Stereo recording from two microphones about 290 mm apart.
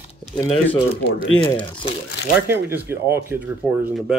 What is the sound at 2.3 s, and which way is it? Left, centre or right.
Speech, centre.